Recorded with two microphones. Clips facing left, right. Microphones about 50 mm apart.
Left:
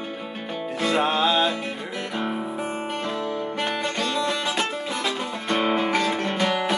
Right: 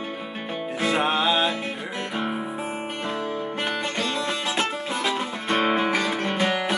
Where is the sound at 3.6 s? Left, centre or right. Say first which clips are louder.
Left 1 dB; right.